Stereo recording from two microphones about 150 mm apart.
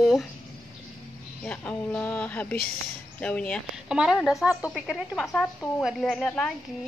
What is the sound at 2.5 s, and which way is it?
Speech, 85° left.